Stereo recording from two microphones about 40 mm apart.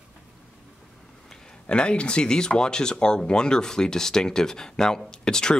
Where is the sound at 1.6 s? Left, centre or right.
Left.